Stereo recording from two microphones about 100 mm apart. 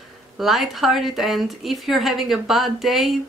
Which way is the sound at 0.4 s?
Centre (ahead or behind).